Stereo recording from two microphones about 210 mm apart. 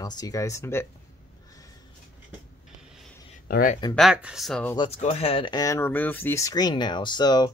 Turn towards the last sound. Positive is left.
turn(degrees=20)  # may be behind; listen again after turning